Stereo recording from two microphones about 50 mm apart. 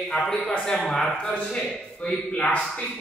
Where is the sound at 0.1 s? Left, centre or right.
Centre.